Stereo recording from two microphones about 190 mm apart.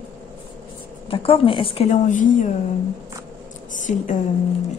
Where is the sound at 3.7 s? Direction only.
40° left (ahead or behind).